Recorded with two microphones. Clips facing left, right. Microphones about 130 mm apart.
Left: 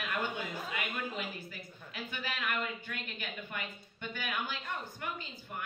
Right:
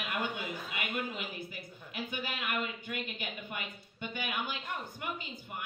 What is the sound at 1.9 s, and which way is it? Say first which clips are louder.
Speech: right 2 dB; 15° right (ahead or behind).